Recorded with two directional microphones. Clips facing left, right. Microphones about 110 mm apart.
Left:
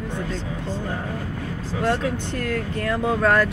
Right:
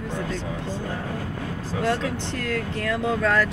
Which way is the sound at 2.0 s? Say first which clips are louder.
Left 2 dB; 50° left (ahead or behind).